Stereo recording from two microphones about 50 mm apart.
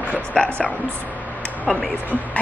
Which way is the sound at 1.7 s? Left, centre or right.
Centre.